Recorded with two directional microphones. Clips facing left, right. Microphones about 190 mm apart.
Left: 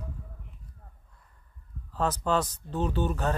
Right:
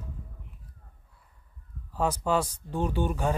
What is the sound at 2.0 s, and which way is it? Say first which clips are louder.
Speech: right 1 dB; 10° right (ahead or behind).